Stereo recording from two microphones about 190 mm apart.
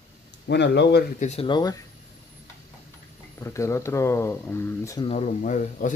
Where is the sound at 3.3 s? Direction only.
15° left (ahead or behind).